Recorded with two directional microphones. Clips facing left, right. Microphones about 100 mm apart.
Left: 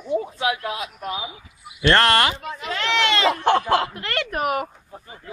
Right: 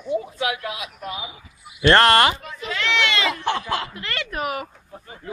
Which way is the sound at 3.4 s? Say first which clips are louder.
Left 6 dB; 55° left (ahead or behind).